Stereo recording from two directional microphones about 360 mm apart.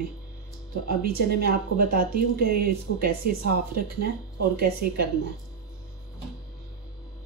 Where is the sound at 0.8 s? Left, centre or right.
Right.